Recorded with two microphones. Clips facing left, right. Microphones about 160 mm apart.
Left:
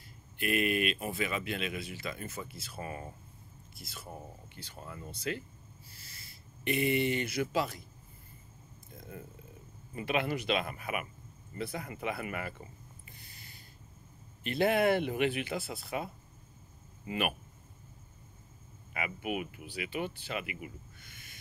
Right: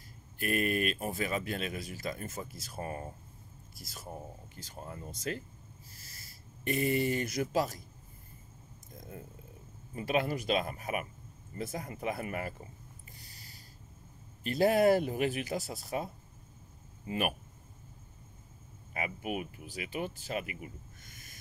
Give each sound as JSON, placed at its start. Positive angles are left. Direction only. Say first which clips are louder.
{"t": 0.4, "sound": "speech", "louder": "left 1 dB", "side_deg": -40}
{"t": 8.9, "sound": "a sound", "louder": "even", "side_deg": -40}
{"t": 9.9, "sound": "speech", "louder": "right 1 dB", "side_deg": -40}
{"t": 13.2, "sound": "a sound", "louder": "even", "side_deg": -40}
{"t": 14.4, "sound": "speech", "louder": "right 2 dB", "side_deg": -40}
{"t": 18.9, "sound": "speech", "louder": "even", "side_deg": -40}